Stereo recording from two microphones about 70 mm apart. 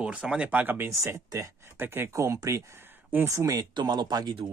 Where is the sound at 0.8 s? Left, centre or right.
Right.